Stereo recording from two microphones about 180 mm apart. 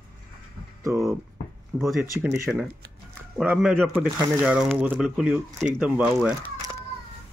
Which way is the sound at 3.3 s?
5° left (ahead or behind).